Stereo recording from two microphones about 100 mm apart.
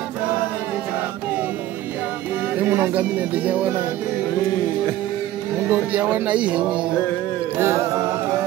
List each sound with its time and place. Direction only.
2.7 s speech: 15° right (ahead or behind)
5.7 s speech: 15° right (ahead or behind)
7.5 s chant: 25° right (ahead or behind)